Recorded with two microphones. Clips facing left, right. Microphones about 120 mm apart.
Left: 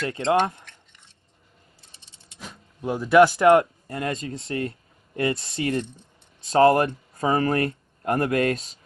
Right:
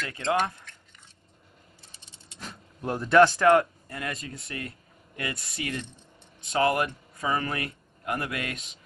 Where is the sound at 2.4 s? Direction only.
Centre (ahead or behind).